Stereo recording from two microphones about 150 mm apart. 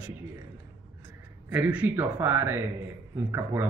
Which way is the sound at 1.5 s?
10° right (ahead or behind).